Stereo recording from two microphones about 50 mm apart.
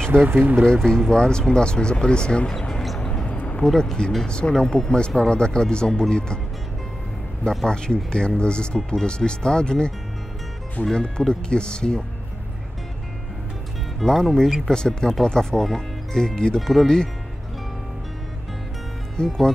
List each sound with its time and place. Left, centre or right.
0.1 s speech: right
0.7 s speech: centre
3.3 s a sound: left
3.6 s speech: centre
7.4 s speech: centre
13.9 s speech: centre
19.1 s speech: centre